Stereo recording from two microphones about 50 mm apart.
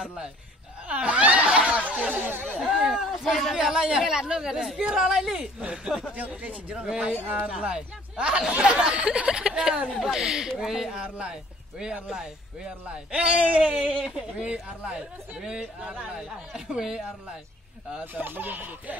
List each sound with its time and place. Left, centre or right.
0.0 s speech: centre
0.8 s snicker: right
1.9 s a sound: right
2.8 s a sound: centre
3.1 s speech: centre
3.5 s speech: centre
6.1 s speech: right
6.9 s speech: centre
12.6 s speech: right
18.0 s speech: right